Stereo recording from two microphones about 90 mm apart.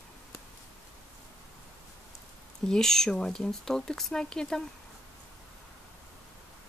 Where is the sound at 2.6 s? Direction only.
5° left (ahead or behind).